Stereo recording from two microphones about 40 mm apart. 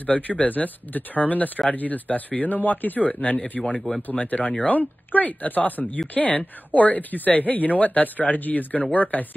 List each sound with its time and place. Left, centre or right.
0.0 s speech: left
3.6 s speech: centre
4.1 s speech: left